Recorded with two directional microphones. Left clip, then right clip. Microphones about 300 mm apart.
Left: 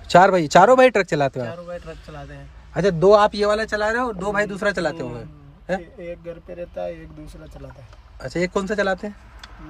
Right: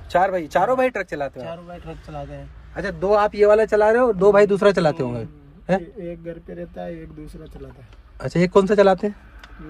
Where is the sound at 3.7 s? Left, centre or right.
Centre.